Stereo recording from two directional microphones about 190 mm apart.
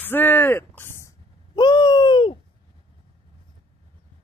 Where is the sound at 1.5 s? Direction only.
25° left (ahead or behind).